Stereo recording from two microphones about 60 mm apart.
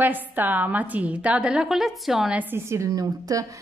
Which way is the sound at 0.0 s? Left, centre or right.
Right.